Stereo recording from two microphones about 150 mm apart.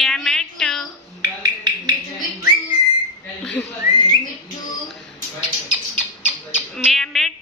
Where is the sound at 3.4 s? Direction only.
5° left (ahead or behind).